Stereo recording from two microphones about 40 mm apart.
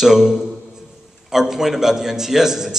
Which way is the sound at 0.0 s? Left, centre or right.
Centre.